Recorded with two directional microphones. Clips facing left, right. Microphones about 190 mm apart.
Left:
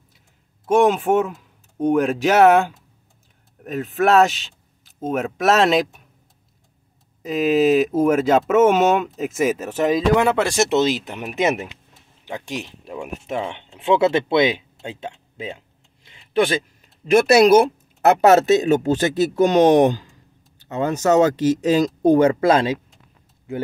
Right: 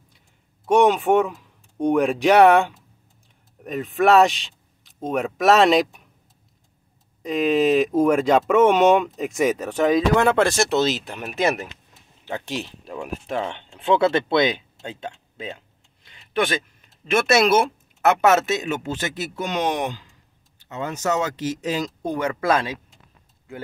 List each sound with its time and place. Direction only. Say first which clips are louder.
0.7 s speech: even; centre (ahead or behind)
7.2 s speech: left 2 dB; 5° left (ahead or behind)
13.6 s speech: left 2 dB; 20° left (ahead or behind)